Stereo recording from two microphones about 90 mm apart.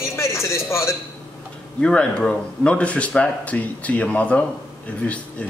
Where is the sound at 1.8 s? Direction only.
10° left (ahead or behind).